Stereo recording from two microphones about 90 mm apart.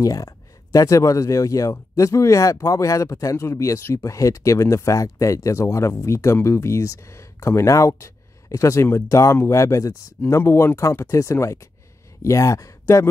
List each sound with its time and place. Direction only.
0.0 s speech: 40° left (ahead or behind)